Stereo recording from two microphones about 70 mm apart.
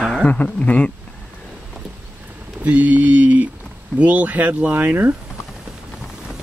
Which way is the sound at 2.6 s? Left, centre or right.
Right.